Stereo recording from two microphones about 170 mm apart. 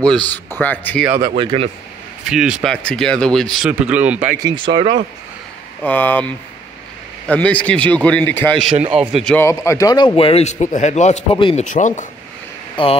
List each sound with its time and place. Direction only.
0.0 s a man's voice: 5° left (ahead or behind)
1.3 s speech: 30° right (ahead or behind)
2.2 s speech: 5° right (ahead or behind)
4.4 s speech: 25° right (ahead or behind)
5.9 s a man's voice: 10° left (ahead or behind)
9.4 s a man's voice: 15° left (ahead or behind); by 11.2 s 45° left (ahead or behind)
11.3 s speech: 30° left (ahead or behind)
11.6 s speech: 45° left (ahead or behind)
12.8 s speech: 30° left (ahead or behind)